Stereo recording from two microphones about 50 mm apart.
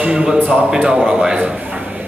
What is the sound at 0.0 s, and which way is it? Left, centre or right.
A man's voice, centre.